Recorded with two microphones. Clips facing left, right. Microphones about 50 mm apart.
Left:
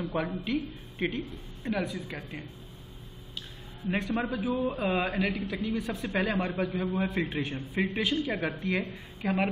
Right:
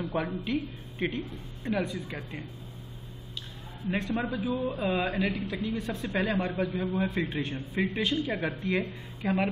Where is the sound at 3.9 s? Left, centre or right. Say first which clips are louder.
Even; centre.